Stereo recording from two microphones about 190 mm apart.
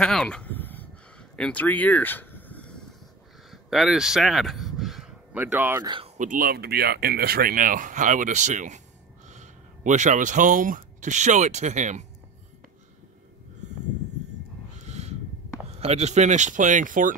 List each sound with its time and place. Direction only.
0.0 s a sound: 5° left (ahead or behind)
3.4 s speech: centre (ahead or behind)
5.9 s speech: 30° right (ahead or behind)
6.1 s speech: 45° right (ahead or behind)
14.9 s a sound: 35° right (ahead or behind)
15.8 s speech: 35° right (ahead or behind)